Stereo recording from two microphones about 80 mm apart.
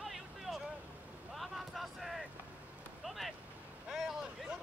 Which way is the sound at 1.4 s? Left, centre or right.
Centre.